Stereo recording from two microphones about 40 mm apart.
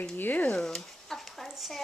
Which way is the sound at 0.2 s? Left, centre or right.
Left.